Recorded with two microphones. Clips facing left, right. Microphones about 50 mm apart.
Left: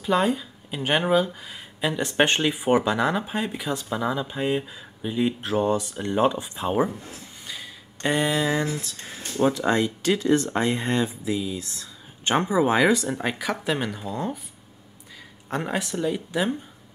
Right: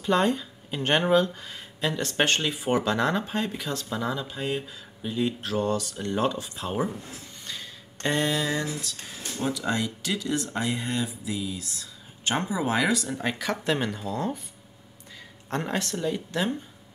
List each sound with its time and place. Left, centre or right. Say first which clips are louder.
0.0 s speech: left 1 dB; centre
7.5 s a sound: left 1 dB; centre
8.6 s speech: left 3 dB; left
11.3 s speech: left 4 dB; left
13.2 s speech: left 2 dB; centre
15.5 s speech: left 2 dB; centre